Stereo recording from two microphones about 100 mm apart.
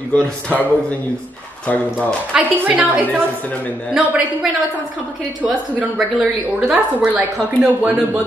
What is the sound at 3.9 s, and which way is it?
Speech, 10° right (ahead or behind).